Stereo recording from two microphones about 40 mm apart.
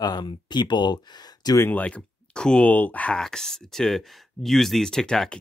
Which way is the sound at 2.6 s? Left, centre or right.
Left.